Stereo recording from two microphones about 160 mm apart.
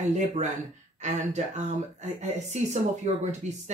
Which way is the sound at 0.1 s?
45° right (ahead or behind).